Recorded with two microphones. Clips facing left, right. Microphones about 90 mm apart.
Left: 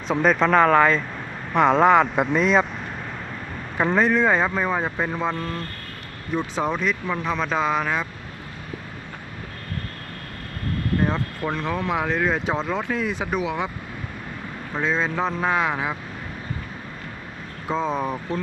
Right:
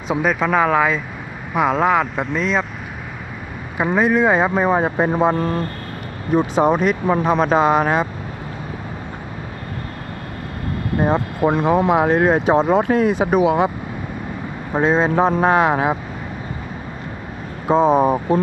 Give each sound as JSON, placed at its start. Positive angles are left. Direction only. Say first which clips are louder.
{"t": 0.1, "sound": "speech", "louder": "even", "side_deg": -5}
{"t": 3.7, "sound": "speech", "louder": "right 3 dB", "side_deg": -10}
{"t": 6.6, "sound": "speech", "louder": "right 7 dB", "side_deg": -55}
{"t": 11.0, "sound": "speech", "louder": "right 10 dB", "side_deg": -20}
{"t": 11.9, "sound": "speech", "louder": "right 8 dB", "side_deg": -45}
{"t": 14.8, "sound": "speech", "louder": "right 8 dB", "side_deg": -50}
{"t": 17.6, "sound": "speech", "louder": "right 10 dB", "side_deg": -50}